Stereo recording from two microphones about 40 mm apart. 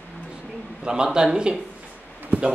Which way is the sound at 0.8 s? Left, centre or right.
Right.